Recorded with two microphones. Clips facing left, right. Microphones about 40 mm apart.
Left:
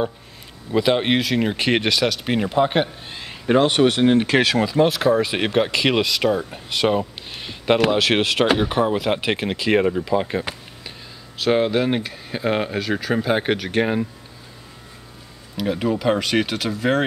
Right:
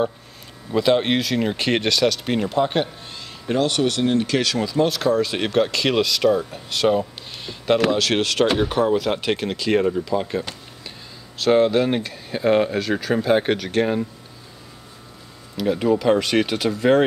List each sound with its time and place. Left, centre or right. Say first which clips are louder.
0.7 s speech: even; centre
11.3 s speech: right 2 dB; centre
15.5 s speech: right 3 dB; centre